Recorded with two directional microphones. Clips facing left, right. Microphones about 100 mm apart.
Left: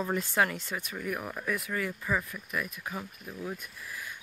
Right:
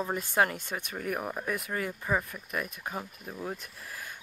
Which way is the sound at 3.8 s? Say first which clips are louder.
Left 1 dB; 45° right (ahead or behind).